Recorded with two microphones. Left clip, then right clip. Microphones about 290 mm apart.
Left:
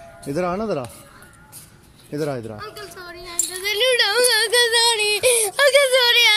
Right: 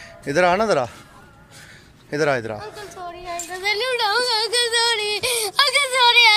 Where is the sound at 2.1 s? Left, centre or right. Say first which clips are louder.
Right 6 dB; right.